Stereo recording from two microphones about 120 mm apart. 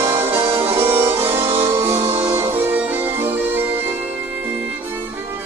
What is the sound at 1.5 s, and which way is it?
Music, 50° right (ahead or behind).